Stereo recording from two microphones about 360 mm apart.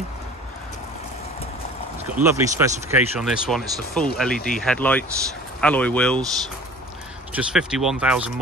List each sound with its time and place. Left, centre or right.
2.2 s speech: centre
7.3 s speech: centre